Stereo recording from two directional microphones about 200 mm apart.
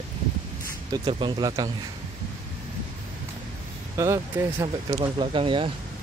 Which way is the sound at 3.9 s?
15° right (ahead or behind).